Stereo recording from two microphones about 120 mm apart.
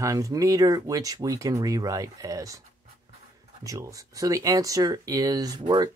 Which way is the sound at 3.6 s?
30° right (ahead or behind).